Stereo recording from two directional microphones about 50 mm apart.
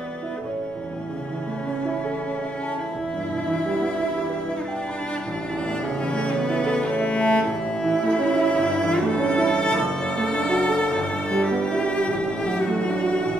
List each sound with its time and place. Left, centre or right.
3.4 s music: left
6.1 s music: centre